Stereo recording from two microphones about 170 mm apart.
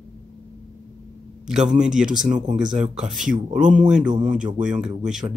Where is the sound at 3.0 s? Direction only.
5° right (ahead or behind).